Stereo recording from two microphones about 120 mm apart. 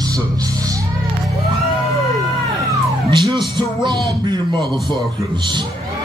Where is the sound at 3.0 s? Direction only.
40° right (ahead or behind).